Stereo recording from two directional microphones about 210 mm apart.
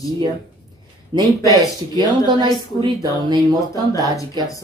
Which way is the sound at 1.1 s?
20° right (ahead or behind).